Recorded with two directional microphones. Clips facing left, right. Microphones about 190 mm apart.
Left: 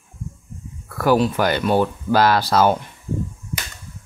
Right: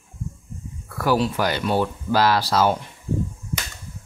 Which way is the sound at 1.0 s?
55° left (ahead or behind).